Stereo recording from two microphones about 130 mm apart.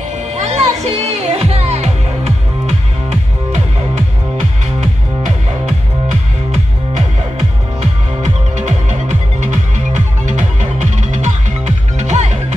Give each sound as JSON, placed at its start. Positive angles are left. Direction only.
{"t": 0.3, "sound": "music", "side_deg": -60}
{"t": 4.7, "sound": "music", "side_deg": -70}
{"t": 7.8, "sound": "music", "side_deg": -60}